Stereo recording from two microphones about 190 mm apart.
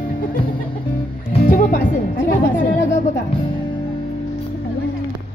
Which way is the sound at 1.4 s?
50° left (ahead or behind).